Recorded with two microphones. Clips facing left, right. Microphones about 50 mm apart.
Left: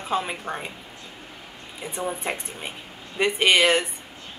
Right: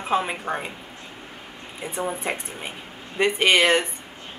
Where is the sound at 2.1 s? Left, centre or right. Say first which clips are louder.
Right 1 dB; centre.